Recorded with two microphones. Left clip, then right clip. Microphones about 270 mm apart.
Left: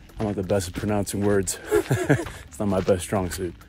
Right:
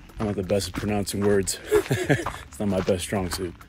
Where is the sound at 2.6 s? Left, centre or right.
Centre.